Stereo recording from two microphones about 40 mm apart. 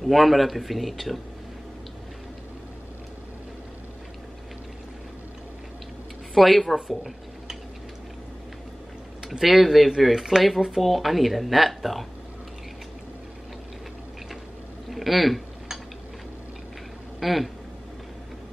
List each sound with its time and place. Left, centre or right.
0.0 s speech: centre
6.3 s speech: centre
9.4 s speech: centre
14.9 s a sound: centre
17.2 s speech: centre